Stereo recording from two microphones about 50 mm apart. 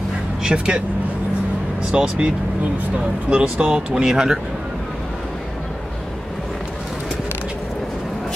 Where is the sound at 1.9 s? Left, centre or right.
Centre.